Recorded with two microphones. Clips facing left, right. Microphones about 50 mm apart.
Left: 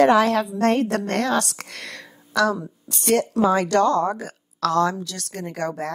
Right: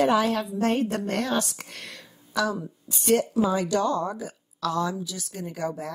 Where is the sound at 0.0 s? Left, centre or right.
Left.